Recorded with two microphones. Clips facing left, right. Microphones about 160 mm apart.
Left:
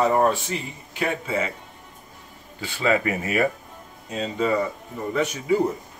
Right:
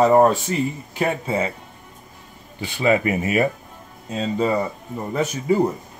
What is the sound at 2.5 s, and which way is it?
Speech, 20° right (ahead or behind).